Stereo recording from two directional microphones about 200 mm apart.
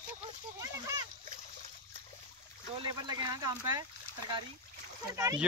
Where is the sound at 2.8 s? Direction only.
20° right (ahead or behind).